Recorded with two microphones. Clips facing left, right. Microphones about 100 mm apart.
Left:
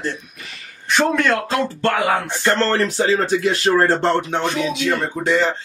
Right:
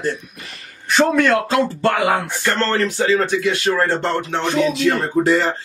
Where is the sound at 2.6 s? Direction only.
30° left (ahead or behind).